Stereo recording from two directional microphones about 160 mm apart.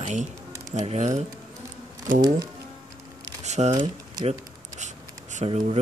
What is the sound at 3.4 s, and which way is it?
Speech, 45° right (ahead or behind).